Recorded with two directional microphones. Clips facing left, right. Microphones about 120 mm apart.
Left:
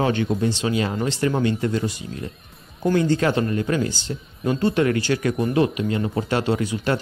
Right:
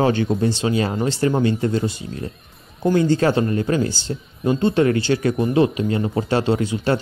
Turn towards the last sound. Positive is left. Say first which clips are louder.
# right 3 dB
turn(degrees=-30)  # may be behind; listen again after turning